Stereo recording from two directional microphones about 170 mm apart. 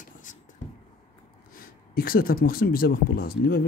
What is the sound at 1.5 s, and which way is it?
Speech, 60° left (ahead or behind).